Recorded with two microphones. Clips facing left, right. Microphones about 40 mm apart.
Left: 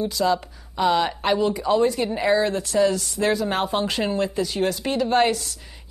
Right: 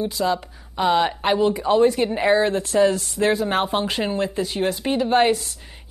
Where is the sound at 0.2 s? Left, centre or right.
Centre.